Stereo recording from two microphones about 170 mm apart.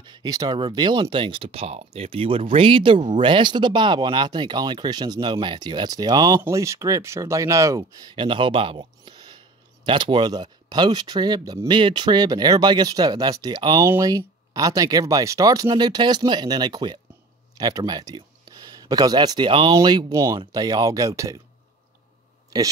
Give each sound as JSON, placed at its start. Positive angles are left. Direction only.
{"t": 0.0, "sound": "speech", "side_deg": -25}
{"t": 8.2, "sound": "speech", "side_deg": -30}